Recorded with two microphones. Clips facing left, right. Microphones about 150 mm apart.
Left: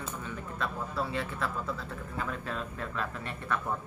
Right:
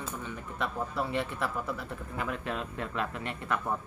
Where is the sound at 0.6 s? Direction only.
15° right (ahead or behind).